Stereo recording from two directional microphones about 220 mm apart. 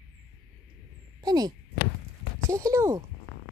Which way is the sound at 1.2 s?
20° right (ahead or behind).